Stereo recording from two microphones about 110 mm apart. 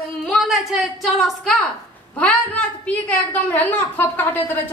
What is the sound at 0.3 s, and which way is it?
A woman's voice, centre (ahead or behind).